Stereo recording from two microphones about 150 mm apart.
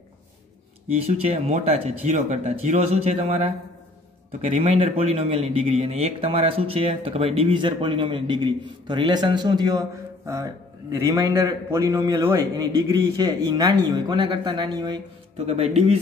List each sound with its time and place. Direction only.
1.0 s speech: 45° right (ahead or behind)
4.7 s speech: 40° right (ahead or behind)
15.3 s speech: 45° right (ahead or behind)